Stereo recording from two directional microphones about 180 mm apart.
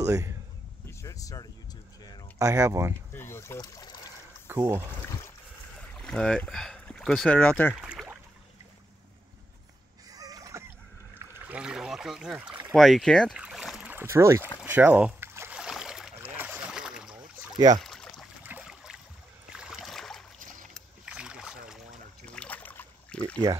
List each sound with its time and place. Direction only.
0.0 s a man's voice: 15° right (ahead or behind)
0.8 s a sound: 20° left (ahead or behind)
2.3 s speech: 15° right (ahead or behind)
3.2 s trickle: 15° left (ahead or behind)
4.5 s speech: 15° right (ahead or behind)
5.8 s speech: 5° left (ahead or behind)
7.8 s a sound: 5° right (ahead or behind)
10.1 s splash: 20° right (ahead or behind)
11.1 s speech: 10° right (ahead or behind)
13.4 s boat: 5° right (ahead or behind)
17.7 s a sound: centre (ahead or behind)
20.7 s boat: 5° right (ahead or behind)
22.2 s rowboat: 5° left (ahead or behind)